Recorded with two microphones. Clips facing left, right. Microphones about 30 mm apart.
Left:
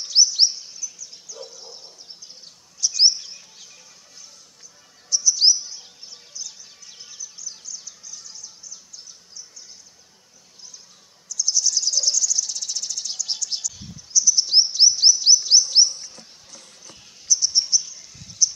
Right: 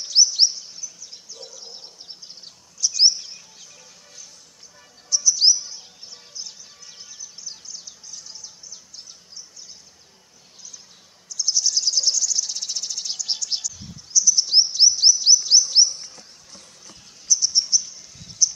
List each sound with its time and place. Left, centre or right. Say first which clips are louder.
0.0 s chirp: even; centre
0.7 s a sound: left 2 dB; right
2.8 s chirp: even; centre
5.1 s chirp: even; centre
6.4 s music: even; right
7.2 s bird: left 2 dB; right
11.2 s insect: even; right
13.7 s chirp: left 1 dB; centre
16.8 s a sound: even; centre